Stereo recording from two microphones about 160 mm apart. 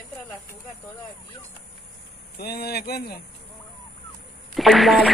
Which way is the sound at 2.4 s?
75° left (ahead or behind).